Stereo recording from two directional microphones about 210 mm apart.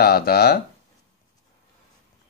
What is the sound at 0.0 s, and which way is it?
Speech, 50° left (ahead or behind).